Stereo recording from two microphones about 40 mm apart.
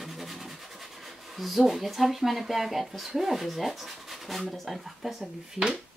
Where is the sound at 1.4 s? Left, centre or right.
Centre.